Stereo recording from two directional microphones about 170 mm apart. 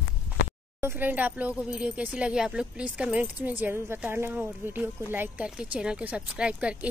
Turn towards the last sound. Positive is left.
turn(degrees=-5)  # may be behind; listen again after turning